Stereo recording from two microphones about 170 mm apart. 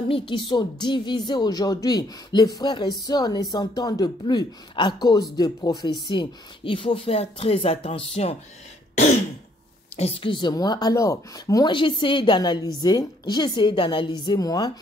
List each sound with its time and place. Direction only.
0.1 s speech: 30° left (ahead or behind)
9.9 s speech: 35° left (ahead or behind)